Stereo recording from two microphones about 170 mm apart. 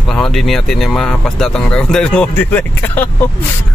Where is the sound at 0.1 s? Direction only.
Centre (ahead or behind).